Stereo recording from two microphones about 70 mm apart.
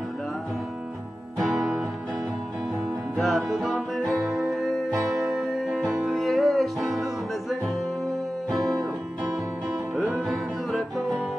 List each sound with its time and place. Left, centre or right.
3.2 s music: centre
10.2 s music: centre